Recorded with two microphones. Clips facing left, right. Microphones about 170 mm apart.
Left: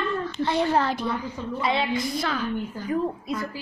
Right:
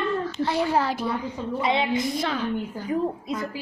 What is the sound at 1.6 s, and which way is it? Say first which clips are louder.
A woman's voice: right 1 dB; 20° right (ahead or behind).